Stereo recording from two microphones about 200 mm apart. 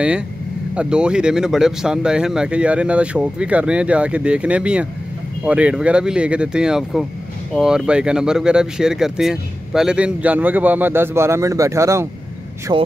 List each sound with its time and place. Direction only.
0.7 s speech: 5° right (ahead or behind); by 12.8 s 20° right (ahead or behind)